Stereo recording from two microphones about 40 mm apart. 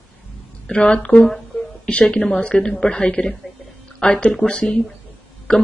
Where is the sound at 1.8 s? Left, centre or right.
Left.